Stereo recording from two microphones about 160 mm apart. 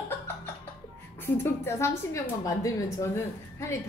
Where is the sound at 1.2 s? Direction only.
15° left (ahead or behind).